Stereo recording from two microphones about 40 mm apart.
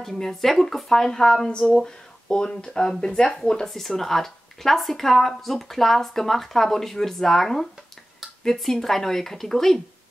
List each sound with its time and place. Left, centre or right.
0.0 s speech: centre
1.5 s speech: left